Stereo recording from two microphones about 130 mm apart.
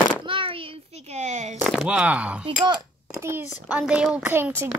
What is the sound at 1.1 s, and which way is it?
Speech, 60° right (ahead or behind).